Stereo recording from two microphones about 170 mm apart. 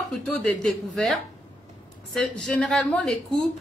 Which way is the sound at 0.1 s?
5° left (ahead or behind).